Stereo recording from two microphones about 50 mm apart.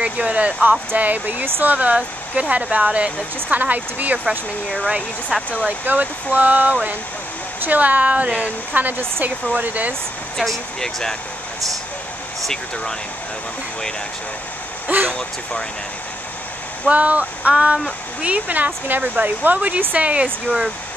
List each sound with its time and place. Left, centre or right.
0.0 s speech: right
5.3 s speech: centre
5.7 s speech: right
8.7 s speech: right
10.3 s speech: centre
15.0 s speech: centre
16.8 s speech: right